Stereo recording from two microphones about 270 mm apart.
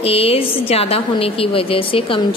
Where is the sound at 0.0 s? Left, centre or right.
Left.